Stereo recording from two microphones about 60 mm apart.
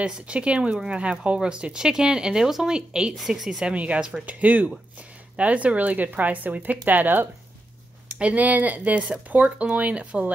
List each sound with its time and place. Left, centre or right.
0.0 s a woman's voice: centre
3.6 s speech: right